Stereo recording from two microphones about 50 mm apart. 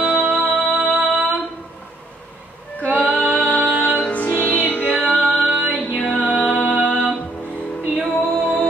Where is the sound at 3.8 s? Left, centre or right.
Left.